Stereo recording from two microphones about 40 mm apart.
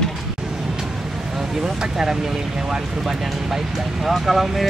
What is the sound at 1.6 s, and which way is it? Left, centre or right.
Speech, centre.